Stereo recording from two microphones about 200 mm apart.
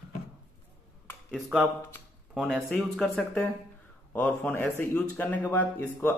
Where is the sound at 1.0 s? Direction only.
Centre (ahead or behind).